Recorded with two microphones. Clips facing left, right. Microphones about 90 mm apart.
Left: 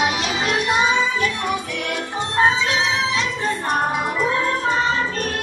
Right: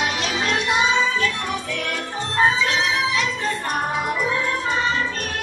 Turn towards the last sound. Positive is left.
turn(degrees=20)  # may be behind; listen again after turning